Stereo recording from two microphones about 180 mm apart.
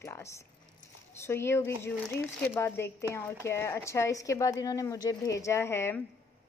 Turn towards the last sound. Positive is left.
turn(degrees=15)  # may be behind; listen again after turning